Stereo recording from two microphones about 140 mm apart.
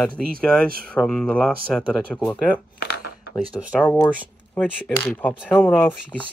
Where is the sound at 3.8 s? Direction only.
10° left (ahead or behind).